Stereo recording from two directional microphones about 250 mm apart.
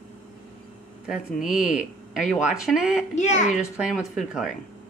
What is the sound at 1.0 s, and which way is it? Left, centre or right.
Speech, centre.